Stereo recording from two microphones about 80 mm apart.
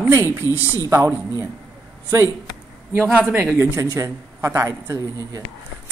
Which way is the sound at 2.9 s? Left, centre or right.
Right.